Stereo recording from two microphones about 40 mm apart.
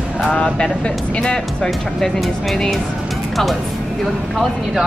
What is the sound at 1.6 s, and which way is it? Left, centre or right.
Speech, centre.